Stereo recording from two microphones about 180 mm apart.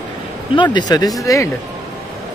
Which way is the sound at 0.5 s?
25° left (ahead or behind).